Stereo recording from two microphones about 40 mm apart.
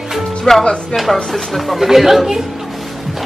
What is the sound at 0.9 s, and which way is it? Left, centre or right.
Speech, centre.